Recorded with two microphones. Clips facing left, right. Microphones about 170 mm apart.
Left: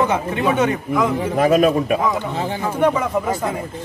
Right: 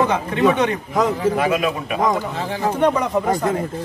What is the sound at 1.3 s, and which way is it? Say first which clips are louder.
Speech: left 5 dB; 40° left (ahead or behind).